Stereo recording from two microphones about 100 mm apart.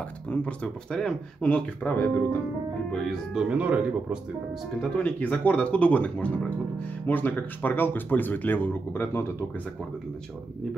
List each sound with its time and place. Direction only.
0.3 s speech: 10° left (ahead or behind)
2.9 s speech: centre (ahead or behind)
3.4 s speech: 10° right (ahead or behind)
4.7 s a man's voice: 10° left (ahead or behind)